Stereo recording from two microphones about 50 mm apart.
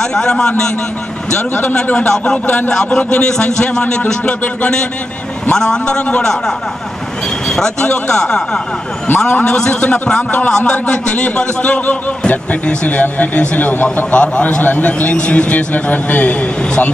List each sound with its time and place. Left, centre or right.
0.1 s a man's voice: centre
2.0 s a man's voice: left
3.8 s a man's voice: left
6.0 s a man's voice: left
7.5 s a man's voice: centre